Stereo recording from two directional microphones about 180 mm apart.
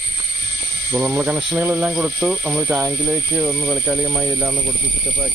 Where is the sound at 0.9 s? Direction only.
15° right (ahead or behind).